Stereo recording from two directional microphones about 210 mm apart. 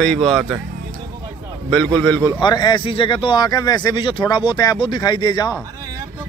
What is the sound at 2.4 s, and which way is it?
Speech, 20° left (ahead or behind).